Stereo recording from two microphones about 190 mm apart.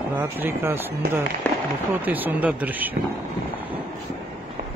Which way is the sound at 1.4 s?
5° left (ahead or behind).